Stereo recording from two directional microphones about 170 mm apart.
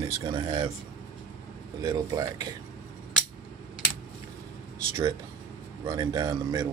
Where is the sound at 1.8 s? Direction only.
20° right (ahead or behind).